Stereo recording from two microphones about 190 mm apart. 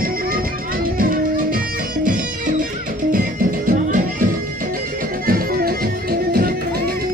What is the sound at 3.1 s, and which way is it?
Music, 45° right (ahead or behind).